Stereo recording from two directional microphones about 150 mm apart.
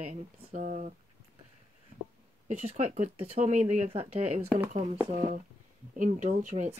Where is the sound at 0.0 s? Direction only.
50° right (ahead or behind).